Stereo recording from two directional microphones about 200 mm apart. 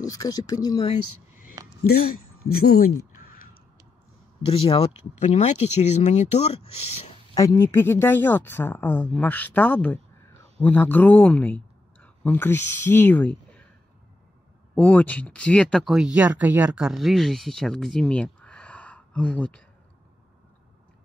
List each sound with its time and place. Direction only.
0.0 s speech: 20° left (ahead or behind)
1.9 s speech: 50° left (ahead or behind)
3.1 s a sound: 45° left (ahead or behind)
4.5 s speech: 30° left (ahead or behind)
7.3 s speech: 15° left (ahead or behind)
14.8 s speech: 5° left (ahead or behind)